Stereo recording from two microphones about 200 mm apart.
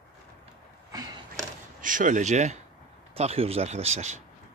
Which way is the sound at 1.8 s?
40° right (ahead or behind).